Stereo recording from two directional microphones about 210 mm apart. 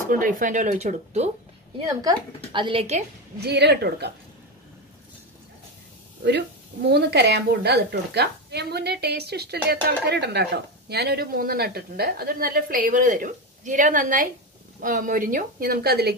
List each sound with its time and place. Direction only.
0.1 s speech: 40° right (ahead or behind)
3.3 s a woman's voice: 50° right (ahead or behind)
6.9 s a woman's voice: 50° right (ahead or behind)